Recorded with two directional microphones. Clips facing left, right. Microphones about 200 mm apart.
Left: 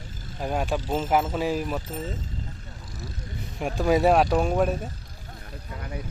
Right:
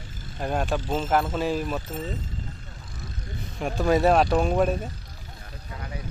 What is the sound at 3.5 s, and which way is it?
Speech, 10° left (ahead or behind).